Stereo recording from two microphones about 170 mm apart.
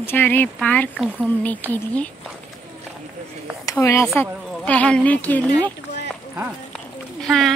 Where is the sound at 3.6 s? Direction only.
20° left (ahead or behind).